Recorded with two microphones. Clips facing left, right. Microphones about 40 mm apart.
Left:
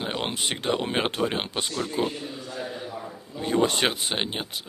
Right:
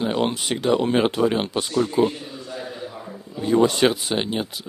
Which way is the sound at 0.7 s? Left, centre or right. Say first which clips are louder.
Right 6 dB; centre.